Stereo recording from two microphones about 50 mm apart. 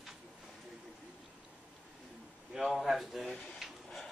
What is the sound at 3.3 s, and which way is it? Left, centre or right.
Speech, left.